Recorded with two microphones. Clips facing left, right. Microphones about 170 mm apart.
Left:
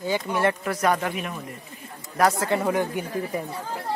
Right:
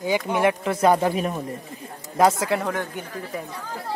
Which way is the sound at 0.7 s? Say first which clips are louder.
Right 5 dB; 25° right (ahead or behind).